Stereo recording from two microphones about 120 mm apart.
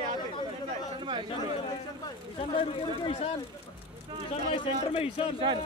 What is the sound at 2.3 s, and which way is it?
Speech, 50° left (ahead or behind).